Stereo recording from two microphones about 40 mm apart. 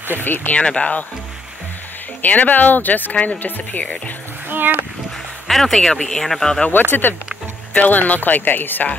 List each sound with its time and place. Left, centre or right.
0.2 s speech: left
0.5 s speech: left
2.2 s speech: left
4.5 s a sound: right
5.5 s speech: centre
5.8 s speech: centre
6.7 s speech: left
7.7 s speech: left